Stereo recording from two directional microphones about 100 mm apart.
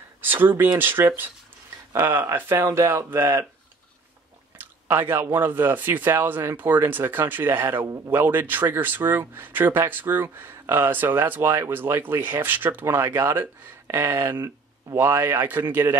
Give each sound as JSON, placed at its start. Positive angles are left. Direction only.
{"t": 0.2, "sound": "speech", "side_deg": -20}
{"t": 4.6, "sound": "speech", "side_deg": -20}